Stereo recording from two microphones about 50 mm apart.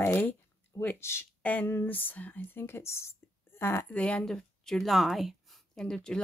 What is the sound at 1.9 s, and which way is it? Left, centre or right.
Speech, left.